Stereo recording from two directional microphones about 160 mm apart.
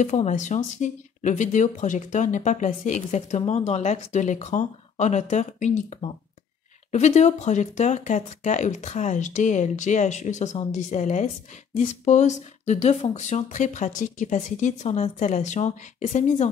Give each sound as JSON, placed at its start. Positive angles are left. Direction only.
{"t": 0.0, "sound": "speech", "side_deg": 45}